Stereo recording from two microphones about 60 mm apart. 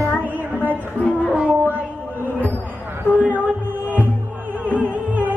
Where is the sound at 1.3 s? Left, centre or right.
Right.